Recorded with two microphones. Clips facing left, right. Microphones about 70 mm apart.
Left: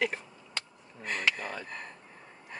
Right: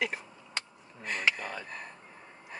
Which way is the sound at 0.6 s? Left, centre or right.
Right.